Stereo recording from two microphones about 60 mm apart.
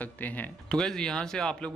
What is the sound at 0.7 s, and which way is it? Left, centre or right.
Speech, centre.